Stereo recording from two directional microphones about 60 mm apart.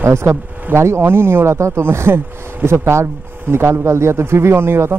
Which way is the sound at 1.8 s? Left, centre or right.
Right.